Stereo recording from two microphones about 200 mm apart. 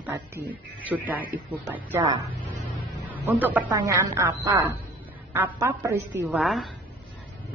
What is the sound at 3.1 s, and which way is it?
A woman's voice, 10° right (ahead or behind).